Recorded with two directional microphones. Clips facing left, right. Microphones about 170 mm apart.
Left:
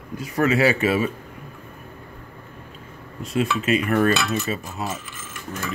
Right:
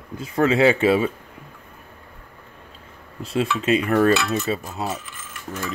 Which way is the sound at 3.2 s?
30° right (ahead or behind).